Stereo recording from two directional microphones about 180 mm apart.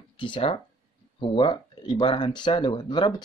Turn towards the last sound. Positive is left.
turn(degrees=25)  # may be behind; listen again after turning